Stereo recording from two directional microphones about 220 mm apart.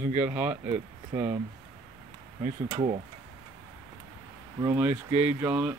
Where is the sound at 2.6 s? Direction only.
25° right (ahead or behind).